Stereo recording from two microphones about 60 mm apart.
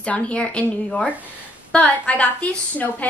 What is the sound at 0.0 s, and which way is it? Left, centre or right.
Speech, centre.